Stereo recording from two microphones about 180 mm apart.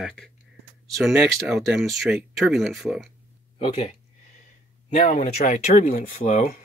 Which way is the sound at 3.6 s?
35° left (ahead or behind).